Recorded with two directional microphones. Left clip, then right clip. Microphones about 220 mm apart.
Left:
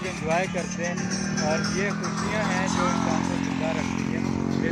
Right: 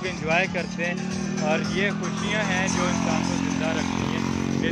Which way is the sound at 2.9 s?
40° right (ahead or behind).